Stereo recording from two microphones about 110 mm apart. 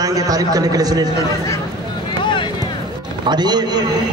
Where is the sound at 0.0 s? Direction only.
35° right (ahead or behind).